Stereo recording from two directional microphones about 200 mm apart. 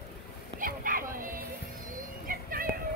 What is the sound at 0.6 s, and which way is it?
Bow-wow, 45° right (ahead or behind).